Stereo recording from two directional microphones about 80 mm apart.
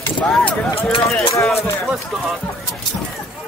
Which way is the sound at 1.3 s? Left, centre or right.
Left.